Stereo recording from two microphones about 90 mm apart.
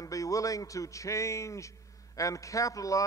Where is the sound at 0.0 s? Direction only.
40° left (ahead or behind).